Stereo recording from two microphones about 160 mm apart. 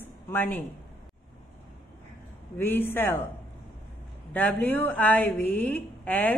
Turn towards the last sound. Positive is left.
turn(degrees=10)  # may be behind; listen again after turning